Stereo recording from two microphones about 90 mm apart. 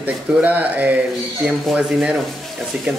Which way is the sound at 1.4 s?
5° right (ahead or behind).